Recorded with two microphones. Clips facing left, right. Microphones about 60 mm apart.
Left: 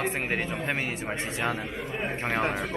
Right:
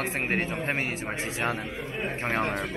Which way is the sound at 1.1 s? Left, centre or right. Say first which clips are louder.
Even; centre.